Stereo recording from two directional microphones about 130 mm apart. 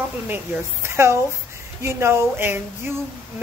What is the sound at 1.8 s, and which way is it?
Speech, 20° right (ahead or behind).